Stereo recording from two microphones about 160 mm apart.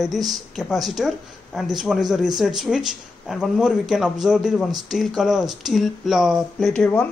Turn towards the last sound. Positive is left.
turn(degrees=5)  # may be behind; listen again after turning